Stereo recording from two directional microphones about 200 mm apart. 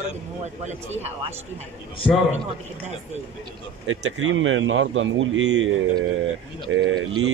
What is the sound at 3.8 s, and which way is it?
A man's voice, 90° right.